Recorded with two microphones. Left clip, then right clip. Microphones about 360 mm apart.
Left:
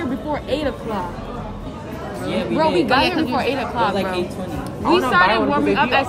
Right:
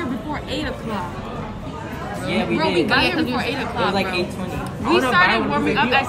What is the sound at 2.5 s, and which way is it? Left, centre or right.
Speech, centre.